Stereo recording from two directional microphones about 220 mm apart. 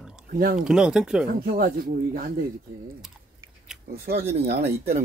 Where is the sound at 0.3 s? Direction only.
40° right (ahead or behind).